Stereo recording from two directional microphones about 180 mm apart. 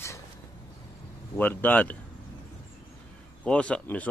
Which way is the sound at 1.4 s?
10° left (ahead or behind).